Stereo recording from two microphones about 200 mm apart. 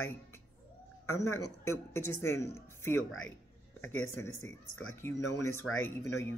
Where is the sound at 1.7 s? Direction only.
90° left.